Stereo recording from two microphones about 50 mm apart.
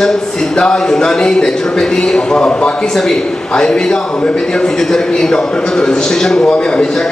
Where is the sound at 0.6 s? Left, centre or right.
Centre.